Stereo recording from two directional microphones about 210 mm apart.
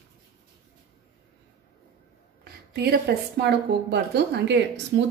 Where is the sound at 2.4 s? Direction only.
50° right (ahead or behind).